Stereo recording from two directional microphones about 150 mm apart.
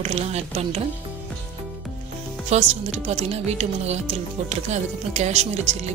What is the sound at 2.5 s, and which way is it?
Speech, 50° right (ahead or behind).